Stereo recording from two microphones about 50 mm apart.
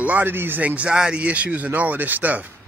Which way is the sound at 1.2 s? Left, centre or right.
Right.